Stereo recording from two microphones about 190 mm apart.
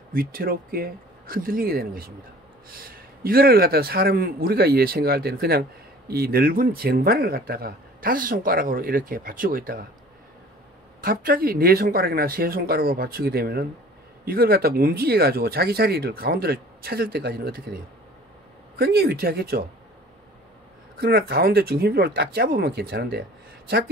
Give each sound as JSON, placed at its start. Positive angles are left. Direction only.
{"t": 0.1, "sound": "a man's voice", "side_deg": -50}
{"t": 11.0, "sound": "a man's voice", "side_deg": -50}
{"t": 18.8, "sound": "speech", "side_deg": -55}
{"t": 21.0, "sound": "a man's voice", "side_deg": -55}